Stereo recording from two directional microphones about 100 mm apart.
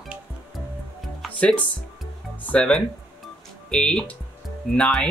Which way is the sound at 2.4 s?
15° left (ahead or behind).